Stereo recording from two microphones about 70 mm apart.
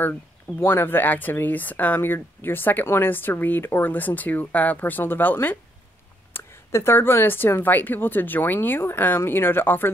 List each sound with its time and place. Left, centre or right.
0.6 s speech: left
6.3 s speech: left